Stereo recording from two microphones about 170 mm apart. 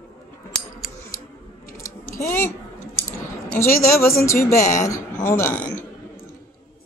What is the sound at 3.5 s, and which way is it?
A woman's voice, 15° left (ahead or behind).